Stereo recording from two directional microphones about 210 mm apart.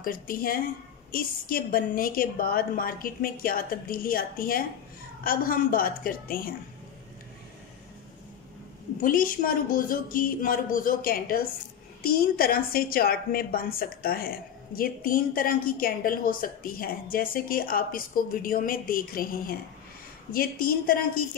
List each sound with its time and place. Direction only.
0.0 s a woman's voice: 45° left (ahead or behind)
9.0 s a woman's voice: 40° left (ahead or behind)